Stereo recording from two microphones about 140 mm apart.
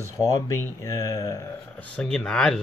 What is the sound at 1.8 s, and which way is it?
Speech, 5° left (ahead or behind).